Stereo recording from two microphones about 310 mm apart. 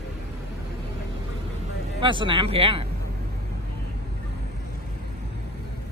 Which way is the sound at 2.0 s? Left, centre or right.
Centre.